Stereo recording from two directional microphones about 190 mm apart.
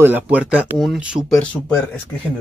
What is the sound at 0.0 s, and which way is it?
Speech, 10° right (ahead or behind).